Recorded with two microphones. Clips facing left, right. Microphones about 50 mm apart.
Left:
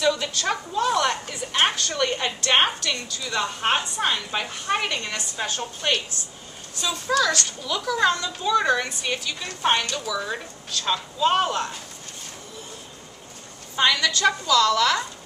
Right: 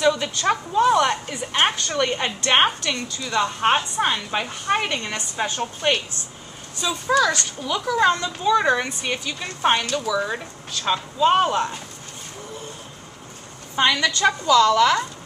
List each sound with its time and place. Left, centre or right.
0.0 s a woman's voice: centre
3.3 s speech: centre
13.7 s a woman's voice: centre